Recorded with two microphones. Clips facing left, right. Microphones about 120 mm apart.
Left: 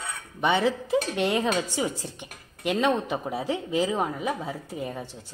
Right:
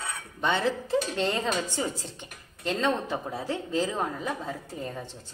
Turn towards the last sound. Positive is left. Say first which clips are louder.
# left 3 dB
turn(degrees=15)  # may be behind; listen again after turning